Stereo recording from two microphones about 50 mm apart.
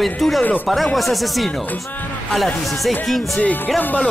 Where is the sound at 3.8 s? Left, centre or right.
Left.